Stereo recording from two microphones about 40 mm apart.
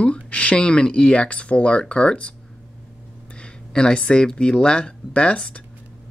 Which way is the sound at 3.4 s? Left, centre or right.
Left.